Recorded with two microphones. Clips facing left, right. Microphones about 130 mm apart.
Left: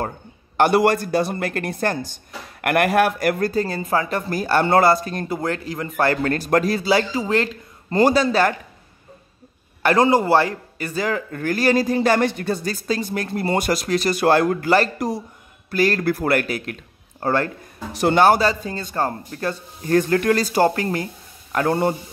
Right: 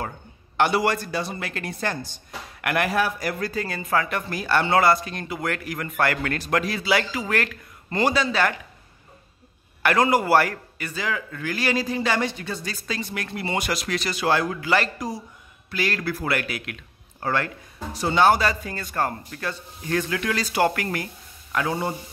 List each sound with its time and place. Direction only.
0.6 s a man's voice: 50° left (ahead or behind)
3.6 s speech: 35° left (ahead or behind)
8.0 s speech: 40° left (ahead or behind)
9.8 s speech: 30° left (ahead or behind)
10.8 s a man's voice: 40° left (ahead or behind)
12.6 s speech: 40° left (ahead or behind)
15.0 s speech: 60° left (ahead or behind)
15.7 s speech: 40° left (ahead or behind)
17.9 s speech: 65° left (ahead or behind)
18.4 s speech: 30° left (ahead or behind)
21.5 s speech: 60° left (ahead or behind)